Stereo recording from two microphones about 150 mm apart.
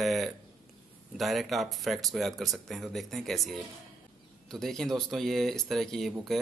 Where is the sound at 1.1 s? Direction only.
Centre (ahead or behind).